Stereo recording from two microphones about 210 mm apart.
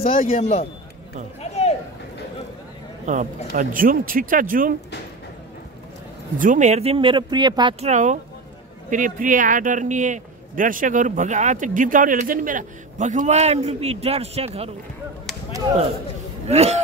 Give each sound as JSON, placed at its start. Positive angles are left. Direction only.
{"t": 0.2, "sound": "a man's voice", "side_deg": 30}
{"t": 1.4, "sound": "a sound", "side_deg": 30}
{"t": 3.1, "sound": "a man's voice", "side_deg": -35}
{"t": 6.3, "sound": "speech", "side_deg": -40}
{"t": 7.9, "sound": "a man's voice", "side_deg": -35}
{"t": 16.4, "sound": "a man's voice", "side_deg": -30}